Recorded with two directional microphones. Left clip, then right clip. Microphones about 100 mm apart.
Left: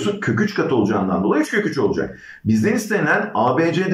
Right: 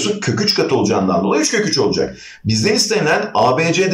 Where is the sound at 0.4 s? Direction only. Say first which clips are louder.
Right 5 dB; 20° right (ahead or behind).